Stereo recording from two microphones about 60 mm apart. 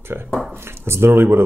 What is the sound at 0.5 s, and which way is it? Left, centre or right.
Speech, right.